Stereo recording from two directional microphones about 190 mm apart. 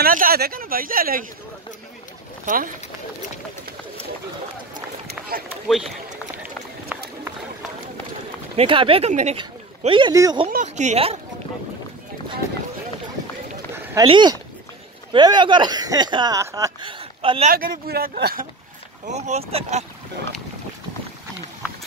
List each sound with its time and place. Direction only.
0.0 s speech: 50° right (ahead or behind)
2.4 s speech: 45° right (ahead or behind)
5.7 s speech: centre (ahead or behind)
6.3 s run: 10° right (ahead or behind)
8.5 s speech: 25° right (ahead or behind)
10.5 s speech: 40° right (ahead or behind)
14.0 s speech: 25° right (ahead or behind)
17.2 s speech: 30° right (ahead or behind)
17.5 s speech: 50° right (ahead or behind)
19.0 s speech: 35° right (ahead or behind)
21.6 s clip-clop: 5° right (ahead or behind)